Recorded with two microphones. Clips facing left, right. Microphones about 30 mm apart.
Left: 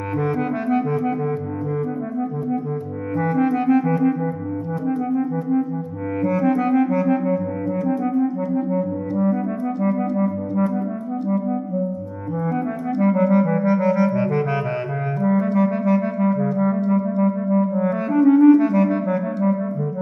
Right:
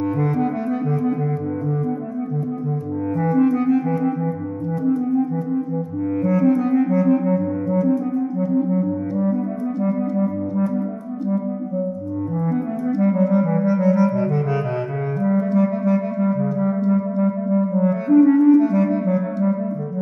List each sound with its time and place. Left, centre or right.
0.2 s music: left
3.2 s clarinet: left
3.8 s clarinet: centre
4.8 s clarinet: left
10.2 s music: centre
12.4 s clarinet: centre